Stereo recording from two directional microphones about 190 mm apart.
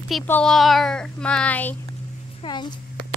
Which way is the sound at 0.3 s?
5° left (ahead or behind).